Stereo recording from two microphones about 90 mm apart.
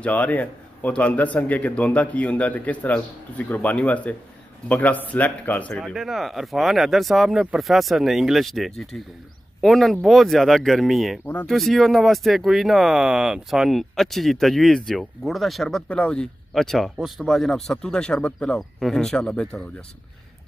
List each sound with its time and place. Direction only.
0.0 s a man's voice: 15° left (ahead or behind)
5.9 s a man's voice: centre (ahead or behind)